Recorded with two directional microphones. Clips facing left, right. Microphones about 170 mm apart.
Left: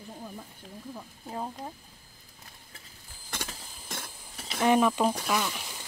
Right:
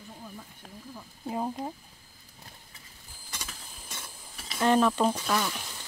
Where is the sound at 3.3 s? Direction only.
60° left (ahead or behind).